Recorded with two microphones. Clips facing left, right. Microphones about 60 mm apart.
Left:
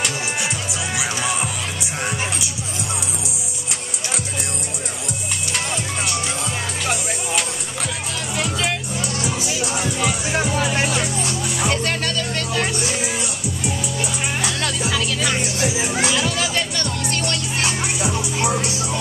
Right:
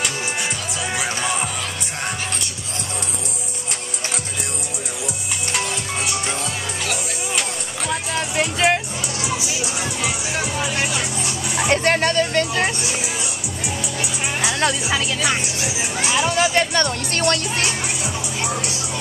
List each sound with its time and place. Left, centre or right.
0.0 s music: centre
8.4 s music: right
9.5 s music: centre
10.7 s music: left
11.7 s music: right
14.4 s music: right
18.0 s music: left